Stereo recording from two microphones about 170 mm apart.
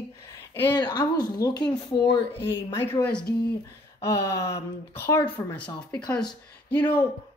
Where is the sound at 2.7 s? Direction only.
10° left (ahead or behind).